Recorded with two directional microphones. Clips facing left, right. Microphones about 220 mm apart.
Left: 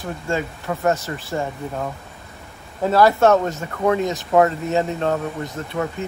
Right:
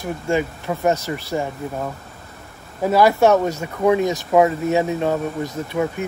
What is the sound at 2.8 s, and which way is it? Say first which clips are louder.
Speech: even; 15° right (ahead or behind).